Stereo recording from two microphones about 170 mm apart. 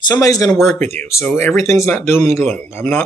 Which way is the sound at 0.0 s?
20° left (ahead or behind).